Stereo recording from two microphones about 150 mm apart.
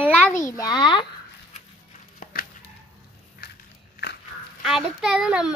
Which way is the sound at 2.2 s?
75° left (ahead or behind).